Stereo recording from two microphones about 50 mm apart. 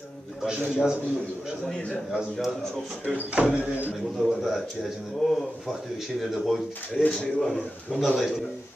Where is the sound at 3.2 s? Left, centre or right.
Right.